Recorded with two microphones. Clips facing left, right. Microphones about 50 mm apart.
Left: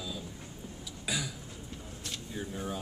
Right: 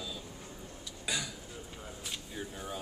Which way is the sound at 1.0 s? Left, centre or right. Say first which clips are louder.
Left 1 dB; centre.